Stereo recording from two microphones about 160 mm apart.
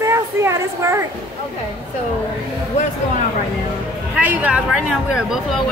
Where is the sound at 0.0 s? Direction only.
15° right (ahead or behind).